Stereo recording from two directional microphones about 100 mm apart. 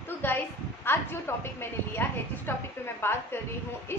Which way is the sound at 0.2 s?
20° left (ahead or behind).